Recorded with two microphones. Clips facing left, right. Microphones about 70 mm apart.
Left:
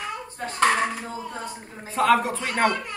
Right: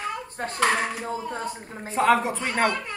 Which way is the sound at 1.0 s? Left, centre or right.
Right.